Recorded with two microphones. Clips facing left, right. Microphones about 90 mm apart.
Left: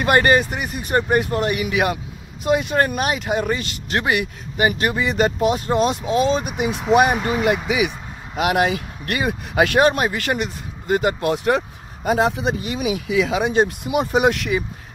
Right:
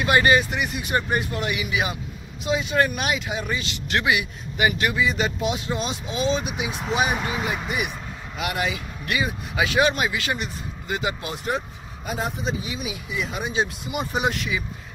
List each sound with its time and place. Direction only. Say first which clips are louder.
0.0 s speech: left 3 dB; 50° left (ahead or behind)
4.9 s speech: left 4 dB; 50° left (ahead or behind)
7.6 s speech: left 7 dB; 85° left
8.4 s speech: left 8 dB; 65° left (ahead or behind); by 13.5 s 90° left
13.5 s speech: left 7 dB; 55° left (ahead or behind)